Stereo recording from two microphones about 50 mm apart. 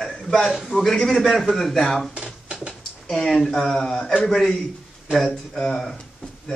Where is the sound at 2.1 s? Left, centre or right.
Right.